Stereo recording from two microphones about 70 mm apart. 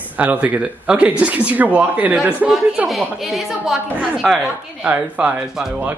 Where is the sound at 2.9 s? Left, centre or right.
Centre.